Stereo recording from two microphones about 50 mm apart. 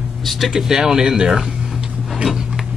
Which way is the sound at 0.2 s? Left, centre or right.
Centre.